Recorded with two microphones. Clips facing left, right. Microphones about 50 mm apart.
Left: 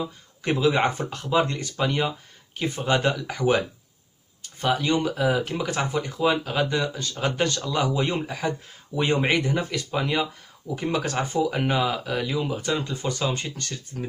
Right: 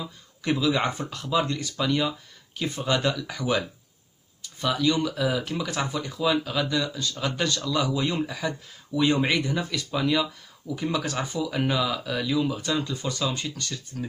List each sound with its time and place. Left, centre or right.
0.0 s speech: left